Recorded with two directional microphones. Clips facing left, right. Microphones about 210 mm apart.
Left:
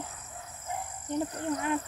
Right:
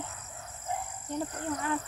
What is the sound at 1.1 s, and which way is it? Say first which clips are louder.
Speech: left 3 dB; 20° left (ahead or behind).